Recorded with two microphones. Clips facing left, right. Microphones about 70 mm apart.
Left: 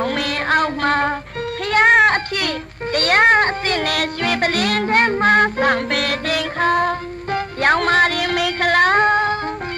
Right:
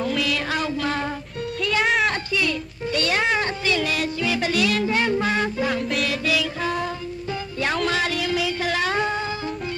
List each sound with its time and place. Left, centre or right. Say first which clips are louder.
0.0 s child singing: left 3 dB; left
1.6 s music: left 8 dB; left